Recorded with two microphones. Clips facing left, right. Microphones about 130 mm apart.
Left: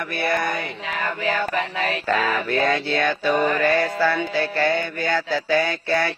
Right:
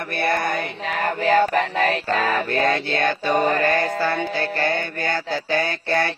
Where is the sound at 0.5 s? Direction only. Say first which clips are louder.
Right 2 dB; 55° right (ahead or behind).